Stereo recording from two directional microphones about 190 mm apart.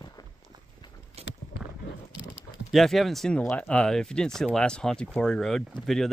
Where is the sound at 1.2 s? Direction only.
35° right (ahead or behind).